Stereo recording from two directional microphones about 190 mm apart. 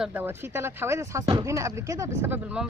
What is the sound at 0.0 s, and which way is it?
A woman's voice, 10° right (ahead or behind).